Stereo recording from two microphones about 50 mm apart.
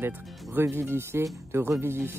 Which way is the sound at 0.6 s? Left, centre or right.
Right.